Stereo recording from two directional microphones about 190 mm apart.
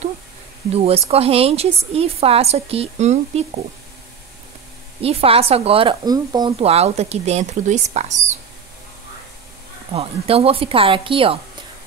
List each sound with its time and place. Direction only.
0.7 s a woman's voice: 30° right (ahead or behind)
5.0 s a woman's voice: 30° right (ahead or behind)
6.6 s a woman's voice: 35° right (ahead or behind)
9.9 s a woman's voice: 30° right (ahead or behind)